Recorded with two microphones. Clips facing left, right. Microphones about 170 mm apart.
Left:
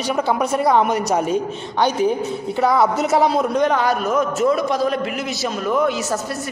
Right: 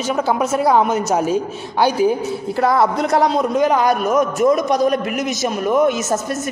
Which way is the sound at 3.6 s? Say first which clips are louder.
Right 2 dB; 10° right (ahead or behind).